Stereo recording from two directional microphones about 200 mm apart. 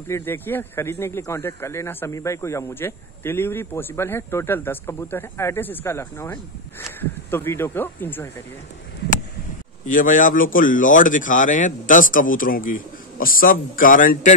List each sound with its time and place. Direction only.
0.1 s speech: 10° left (ahead or behind)
9.8 s speech: 40° left (ahead or behind)